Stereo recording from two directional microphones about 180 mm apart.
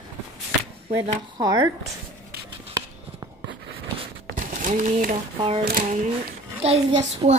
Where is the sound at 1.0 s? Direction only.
25° right (ahead or behind).